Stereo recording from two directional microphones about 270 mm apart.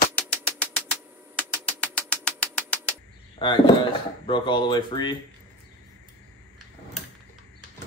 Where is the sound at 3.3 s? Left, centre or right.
Centre.